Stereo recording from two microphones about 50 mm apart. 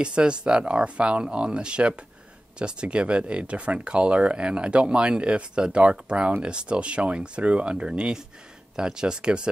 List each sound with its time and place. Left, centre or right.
0.0 s speech: centre